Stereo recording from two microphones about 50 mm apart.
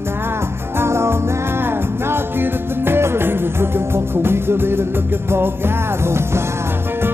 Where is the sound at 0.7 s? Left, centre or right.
Right.